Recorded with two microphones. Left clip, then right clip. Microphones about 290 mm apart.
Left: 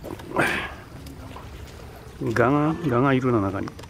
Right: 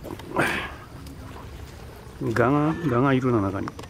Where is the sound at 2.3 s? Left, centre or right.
Centre.